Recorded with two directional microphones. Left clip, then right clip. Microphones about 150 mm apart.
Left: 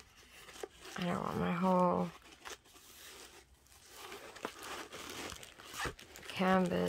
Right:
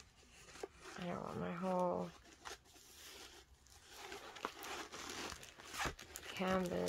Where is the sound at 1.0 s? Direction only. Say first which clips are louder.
Left 8 dB; 65° left (ahead or behind).